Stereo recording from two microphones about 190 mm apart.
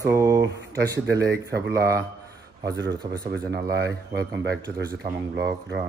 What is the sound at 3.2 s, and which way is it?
Speech, 50° right (ahead or behind).